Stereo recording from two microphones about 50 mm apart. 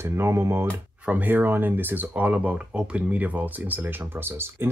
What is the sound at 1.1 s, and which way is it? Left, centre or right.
Speech, right.